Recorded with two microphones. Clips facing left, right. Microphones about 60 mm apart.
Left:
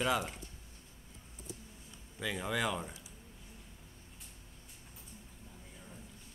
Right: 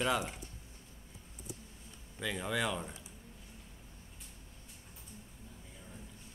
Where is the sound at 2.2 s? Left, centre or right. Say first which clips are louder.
Even; centre.